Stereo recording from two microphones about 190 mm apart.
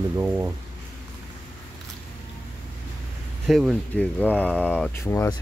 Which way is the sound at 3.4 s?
Centre (ahead or behind).